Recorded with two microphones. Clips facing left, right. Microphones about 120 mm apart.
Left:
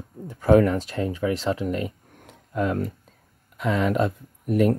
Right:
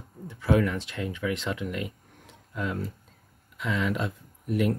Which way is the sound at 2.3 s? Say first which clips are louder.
Left 7 dB; 50° left (ahead or behind).